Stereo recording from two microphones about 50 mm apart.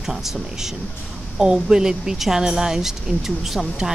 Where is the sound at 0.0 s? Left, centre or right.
Centre.